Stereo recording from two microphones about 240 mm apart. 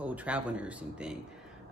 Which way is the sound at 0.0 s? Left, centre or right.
Centre.